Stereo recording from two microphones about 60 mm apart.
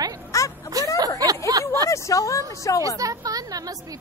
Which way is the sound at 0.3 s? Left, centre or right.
Left.